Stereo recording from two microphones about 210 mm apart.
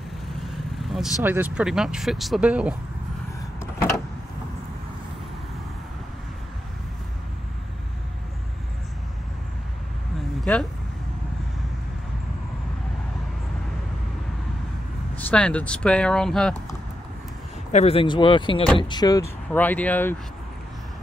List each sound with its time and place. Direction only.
0.8 s vehicle: centre (ahead or behind)
1.2 s speech: 10° right (ahead or behind)
10.4 s vehicle: 5° left (ahead or behind)
15.1 s speech: 5° left (ahead or behind)
17.7 s speech: 30° left (ahead or behind)
19.5 s speech: 10° left (ahead or behind)